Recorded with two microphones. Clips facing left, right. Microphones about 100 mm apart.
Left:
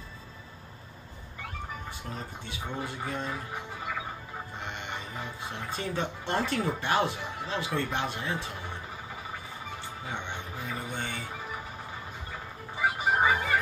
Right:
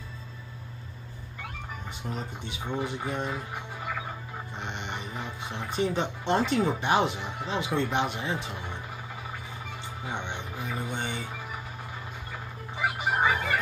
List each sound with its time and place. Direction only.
2.1 s speech: 20° right (ahead or behind)
4.6 s speech: 20° right (ahead or behind)
10.0 s speech: 20° right (ahead or behind)
13.2 s music: 10° left (ahead or behind)